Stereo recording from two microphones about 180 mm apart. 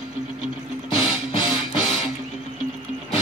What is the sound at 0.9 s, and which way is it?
Music, 30° left (ahead or behind).